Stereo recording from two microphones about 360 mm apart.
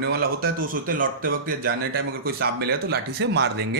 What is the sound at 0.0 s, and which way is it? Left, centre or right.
Speech, right.